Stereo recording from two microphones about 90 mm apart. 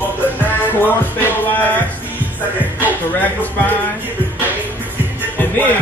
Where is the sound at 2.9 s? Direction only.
20° left (ahead or behind).